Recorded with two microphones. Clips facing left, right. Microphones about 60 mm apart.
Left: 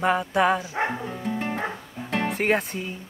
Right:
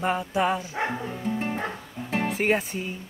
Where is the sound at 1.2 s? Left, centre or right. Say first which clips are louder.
Even; left.